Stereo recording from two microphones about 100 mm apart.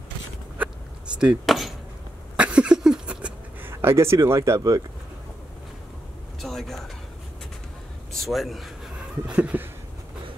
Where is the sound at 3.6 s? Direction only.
25° right (ahead or behind).